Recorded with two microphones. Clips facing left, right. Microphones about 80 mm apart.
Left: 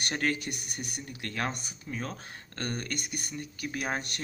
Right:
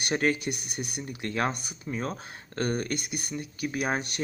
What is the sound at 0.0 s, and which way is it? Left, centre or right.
Speech, centre.